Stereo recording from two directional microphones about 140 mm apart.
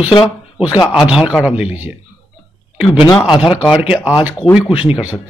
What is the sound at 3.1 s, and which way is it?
Speech, 5° left (ahead or behind).